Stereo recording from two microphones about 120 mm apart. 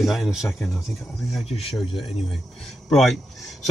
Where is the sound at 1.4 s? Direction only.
55° left (ahead or behind).